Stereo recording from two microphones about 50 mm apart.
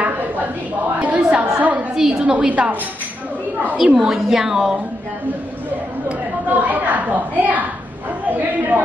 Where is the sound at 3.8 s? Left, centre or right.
Centre.